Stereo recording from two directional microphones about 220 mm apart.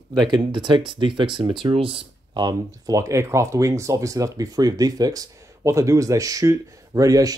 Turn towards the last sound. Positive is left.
turn(degrees=-15)  # may be behind; listen again after turning